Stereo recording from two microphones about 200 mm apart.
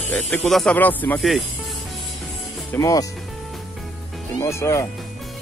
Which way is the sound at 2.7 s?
15° left (ahead or behind).